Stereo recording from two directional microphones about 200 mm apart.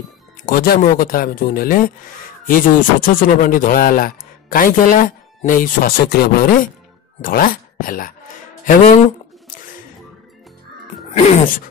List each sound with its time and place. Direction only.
0.4 s a man's voice: 45° left (ahead or behind)
11.1 s speech: 35° left (ahead or behind)